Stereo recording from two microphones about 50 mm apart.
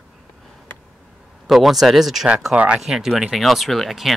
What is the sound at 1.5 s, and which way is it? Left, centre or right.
Speech, centre.